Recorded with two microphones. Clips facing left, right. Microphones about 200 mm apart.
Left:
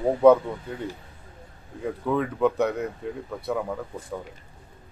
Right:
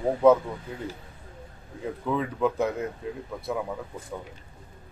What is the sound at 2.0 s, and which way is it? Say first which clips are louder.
Speech: left 3 dB; centre (ahead or behind).